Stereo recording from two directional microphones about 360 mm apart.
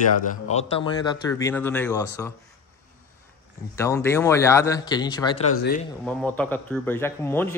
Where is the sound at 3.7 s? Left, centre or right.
Centre.